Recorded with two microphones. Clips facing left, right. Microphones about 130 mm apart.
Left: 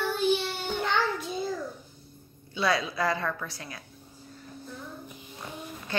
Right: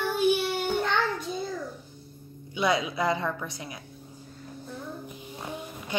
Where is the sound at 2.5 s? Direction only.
20° right (ahead or behind).